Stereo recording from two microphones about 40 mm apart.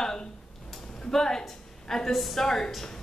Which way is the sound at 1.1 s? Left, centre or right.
Centre.